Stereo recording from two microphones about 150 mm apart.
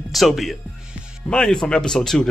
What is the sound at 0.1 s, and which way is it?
Speech, centre (ahead or behind).